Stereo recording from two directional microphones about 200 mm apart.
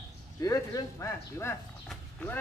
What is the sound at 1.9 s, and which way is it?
Clip-clop, 5° left (ahead or behind).